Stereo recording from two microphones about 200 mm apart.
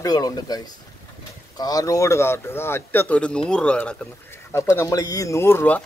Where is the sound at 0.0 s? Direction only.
20° left (ahead or behind).